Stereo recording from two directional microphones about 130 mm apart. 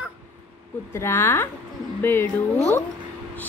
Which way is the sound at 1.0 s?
20° left (ahead or behind).